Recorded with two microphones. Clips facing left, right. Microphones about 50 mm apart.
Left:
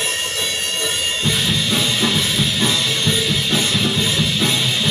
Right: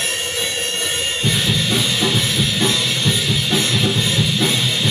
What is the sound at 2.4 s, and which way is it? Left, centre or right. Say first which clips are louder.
Music: even; centre.